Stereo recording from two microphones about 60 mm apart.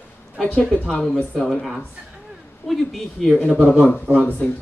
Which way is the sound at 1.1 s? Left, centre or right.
Centre.